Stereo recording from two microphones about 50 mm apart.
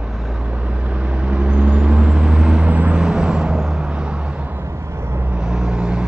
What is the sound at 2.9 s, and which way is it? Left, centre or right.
Vehicle, centre.